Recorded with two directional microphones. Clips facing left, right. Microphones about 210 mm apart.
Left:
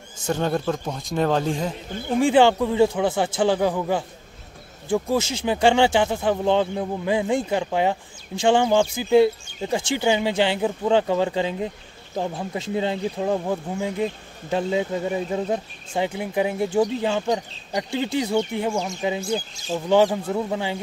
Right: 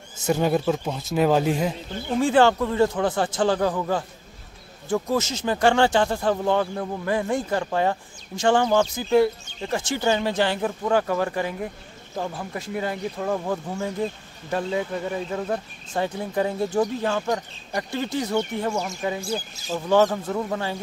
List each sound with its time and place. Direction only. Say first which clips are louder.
0.3 s speech: right 2 dB; 10° right (ahead or behind)
2.1 s speech: left 2 dB; 15° left (ahead or behind)